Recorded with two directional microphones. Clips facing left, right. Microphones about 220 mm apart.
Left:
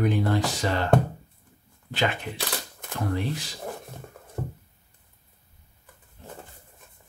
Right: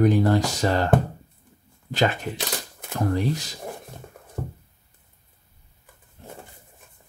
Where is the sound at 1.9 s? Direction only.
45° right (ahead or behind).